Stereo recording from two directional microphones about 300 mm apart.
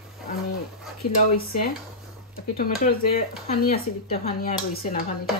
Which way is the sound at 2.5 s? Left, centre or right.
Left.